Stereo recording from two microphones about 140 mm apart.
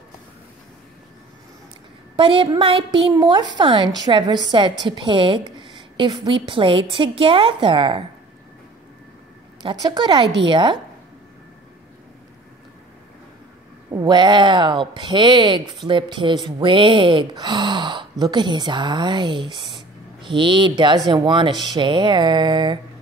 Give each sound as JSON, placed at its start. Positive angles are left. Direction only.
{"t": 2.1, "sound": "a woman's voice", "side_deg": -40}
{"t": 3.1, "sound": "a woman's voice", "side_deg": -30}
{"t": 9.6, "sound": "a woman's voice", "side_deg": -30}
{"t": 13.9, "sound": "a woman's voice", "side_deg": -30}